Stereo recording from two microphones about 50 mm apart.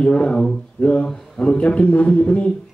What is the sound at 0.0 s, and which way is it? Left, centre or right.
A man's voice, left.